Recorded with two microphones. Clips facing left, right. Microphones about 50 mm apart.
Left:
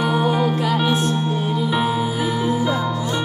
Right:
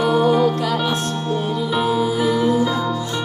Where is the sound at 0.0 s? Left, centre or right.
Centre.